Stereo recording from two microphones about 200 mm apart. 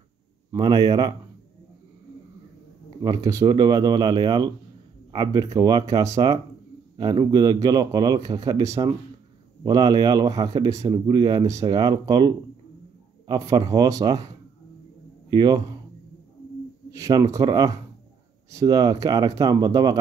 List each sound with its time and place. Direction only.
0.5 s a man's voice: 20° right (ahead or behind)
3.0 s a man's voice: 15° right (ahead or behind)
15.2 s a man's voice: 20° right (ahead or behind)
16.9 s speech: 15° right (ahead or behind)